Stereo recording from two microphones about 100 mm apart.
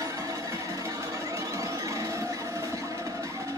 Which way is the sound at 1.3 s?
30° right (ahead or behind).